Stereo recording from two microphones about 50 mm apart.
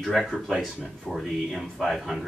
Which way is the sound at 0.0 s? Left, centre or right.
Centre.